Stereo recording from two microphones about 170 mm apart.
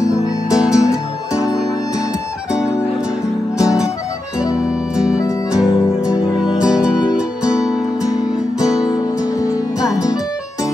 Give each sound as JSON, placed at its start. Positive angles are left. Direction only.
{"t": 0.0, "sound": "music", "side_deg": 20}
{"t": 4.6, "sound": "music", "side_deg": -5}
{"t": 8.8, "sound": "music", "side_deg": 20}